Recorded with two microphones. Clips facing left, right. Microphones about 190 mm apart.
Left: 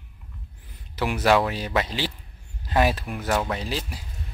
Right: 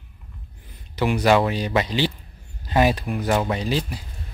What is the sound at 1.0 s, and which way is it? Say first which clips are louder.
Speech: right 3 dB; 5° left (ahead or behind).